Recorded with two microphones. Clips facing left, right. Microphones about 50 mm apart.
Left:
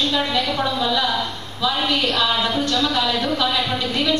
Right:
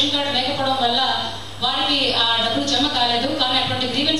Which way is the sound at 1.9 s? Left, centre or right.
Left.